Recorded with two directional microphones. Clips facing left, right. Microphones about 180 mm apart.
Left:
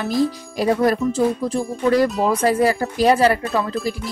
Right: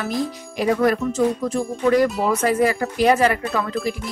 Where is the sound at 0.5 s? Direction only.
35° left (ahead or behind).